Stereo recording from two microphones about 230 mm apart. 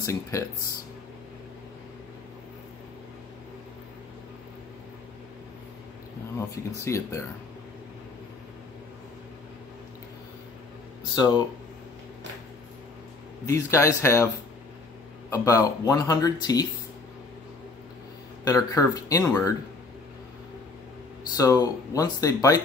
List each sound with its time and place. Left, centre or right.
0.0 s speech: centre
6.8 s speech: centre
11.1 s speech: centre
13.5 s speech: centre
18.4 s speech: centre
21.4 s speech: centre